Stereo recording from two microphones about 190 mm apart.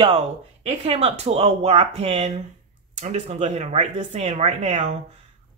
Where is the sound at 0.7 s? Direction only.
35° right (ahead or behind).